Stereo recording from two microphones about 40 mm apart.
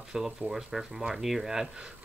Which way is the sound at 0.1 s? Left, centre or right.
Centre.